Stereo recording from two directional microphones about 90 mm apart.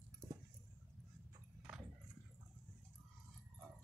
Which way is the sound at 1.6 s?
Centre (ahead or behind).